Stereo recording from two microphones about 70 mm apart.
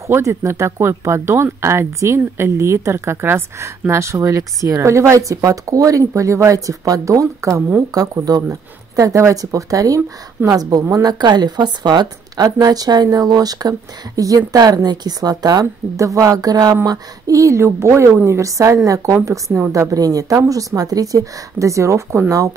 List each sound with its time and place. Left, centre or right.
0.0 s speech: right
7.9 s speech: right
11.1 s a woman's voice: right
12.4 s speech: right
15.6 s speech: right